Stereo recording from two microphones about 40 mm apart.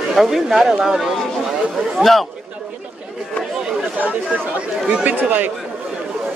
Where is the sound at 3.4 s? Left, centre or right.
Centre.